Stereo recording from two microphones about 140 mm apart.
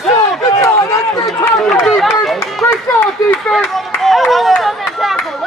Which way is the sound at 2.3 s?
15° left (ahead or behind).